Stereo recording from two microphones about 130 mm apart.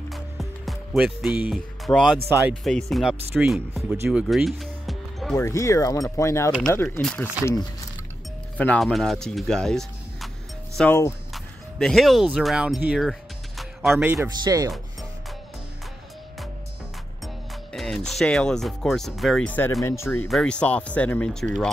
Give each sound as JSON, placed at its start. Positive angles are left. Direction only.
{"t": 0.1, "sound": "music", "side_deg": 0}
{"t": 1.5, "sound": "speech", "side_deg": 5}
{"t": 3.9, "sound": "music", "side_deg": -10}
{"t": 5.4, "sound": "speech", "side_deg": 25}
{"t": 7.0, "sound": "speech", "side_deg": 5}
{"t": 8.5, "sound": "speech", "side_deg": 10}
{"t": 13.6, "sound": "music", "side_deg": -5}
{"t": 14.4, "sound": "speech", "side_deg": -25}
{"t": 17.7, "sound": "speech", "side_deg": 0}
{"t": 20.2, "sound": "speech", "side_deg": 5}